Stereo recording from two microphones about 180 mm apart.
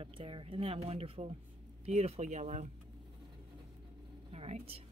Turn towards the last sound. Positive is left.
turn(degrees=-35)  # may be behind; listen again after turning